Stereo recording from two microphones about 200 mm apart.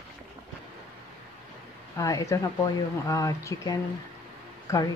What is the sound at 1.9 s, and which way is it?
Speech, 15° left (ahead or behind).